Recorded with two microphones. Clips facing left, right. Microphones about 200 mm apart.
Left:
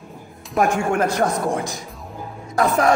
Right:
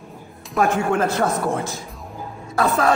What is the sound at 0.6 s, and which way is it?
Music, 15° left (ahead or behind).